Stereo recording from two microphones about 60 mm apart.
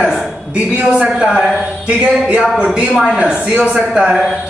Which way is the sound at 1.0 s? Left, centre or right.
Centre.